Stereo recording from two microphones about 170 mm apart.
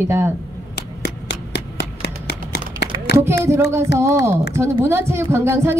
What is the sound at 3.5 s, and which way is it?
A woman's voice, 15° right (ahead or behind).